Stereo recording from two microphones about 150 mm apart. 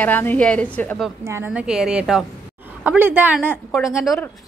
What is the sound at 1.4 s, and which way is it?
A woman's voice, 5° right (ahead or behind).